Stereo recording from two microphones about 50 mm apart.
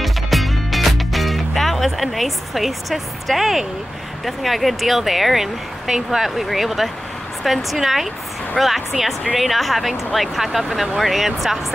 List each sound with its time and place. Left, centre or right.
0.0 s music: centre
4.2 s speech: centre